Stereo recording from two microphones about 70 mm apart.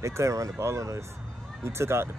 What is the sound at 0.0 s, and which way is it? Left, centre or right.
Speech, right.